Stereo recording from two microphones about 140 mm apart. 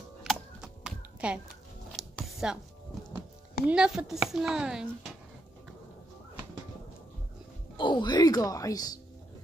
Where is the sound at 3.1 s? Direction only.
10° right (ahead or behind).